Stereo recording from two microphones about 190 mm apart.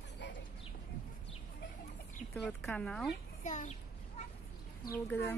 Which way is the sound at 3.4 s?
40° left (ahead or behind).